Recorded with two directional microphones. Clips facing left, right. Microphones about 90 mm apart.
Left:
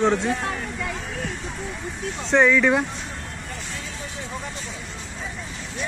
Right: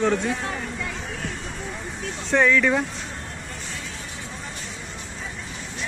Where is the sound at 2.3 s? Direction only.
15° left (ahead or behind).